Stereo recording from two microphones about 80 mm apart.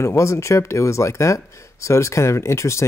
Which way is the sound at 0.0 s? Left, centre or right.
Left.